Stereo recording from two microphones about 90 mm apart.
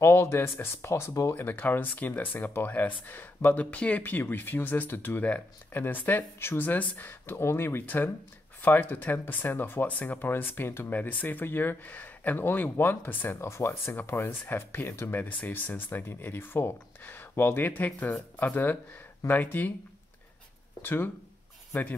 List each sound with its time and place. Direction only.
0.0 s speech: 30° left (ahead or behind)
20.8 s speech: 25° left (ahead or behind)